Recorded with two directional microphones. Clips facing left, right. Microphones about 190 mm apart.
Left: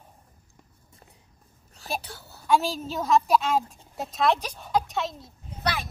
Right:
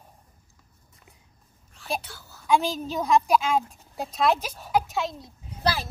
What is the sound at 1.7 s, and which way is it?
Speech, 35° left (ahead or behind).